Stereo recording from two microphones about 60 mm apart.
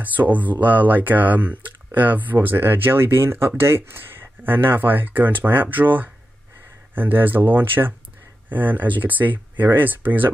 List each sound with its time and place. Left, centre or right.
0.0 s speech: right